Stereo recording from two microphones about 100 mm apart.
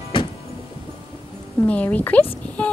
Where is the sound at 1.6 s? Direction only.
15° left (ahead or behind).